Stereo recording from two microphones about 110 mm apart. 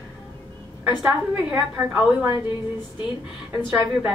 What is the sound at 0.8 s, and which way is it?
A woman's voice, 15° right (ahead or behind).